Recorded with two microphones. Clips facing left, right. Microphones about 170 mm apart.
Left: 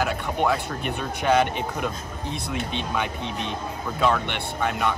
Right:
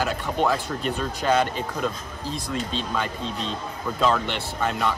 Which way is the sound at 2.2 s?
65° left (ahead or behind).